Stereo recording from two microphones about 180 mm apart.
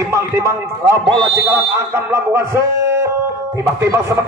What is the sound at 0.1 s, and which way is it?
Speech, 15° right (ahead or behind).